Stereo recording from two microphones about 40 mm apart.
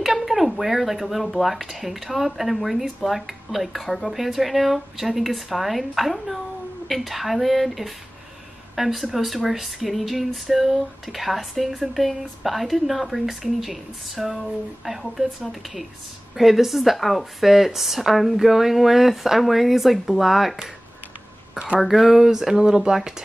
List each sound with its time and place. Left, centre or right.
0.0 s speech: centre
16.3 s speech: centre
21.7 s speech: centre